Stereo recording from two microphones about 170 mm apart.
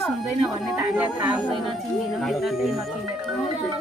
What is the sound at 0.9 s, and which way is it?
Speech, 10° right (ahead or behind).